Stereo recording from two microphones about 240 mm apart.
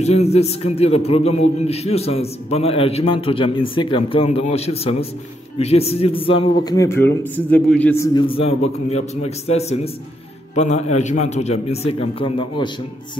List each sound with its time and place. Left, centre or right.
0.0 s a man's voice: left; by 8.2 s centre
8.3 s a man's voice: left